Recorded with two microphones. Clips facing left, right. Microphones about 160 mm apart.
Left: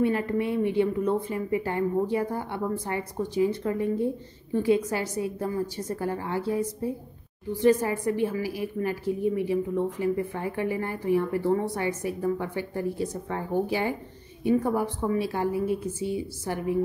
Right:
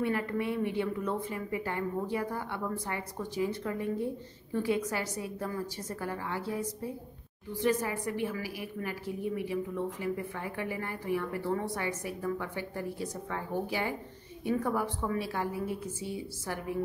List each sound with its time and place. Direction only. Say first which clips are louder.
0.0 s a woman's voice: left 6 dB; 25° left (ahead or behind)
7.6 s a woman's voice: left 8 dB; 30° left (ahead or behind)